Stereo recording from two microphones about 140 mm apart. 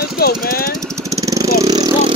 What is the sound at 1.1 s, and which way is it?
Vehicle, 25° right (ahead or behind).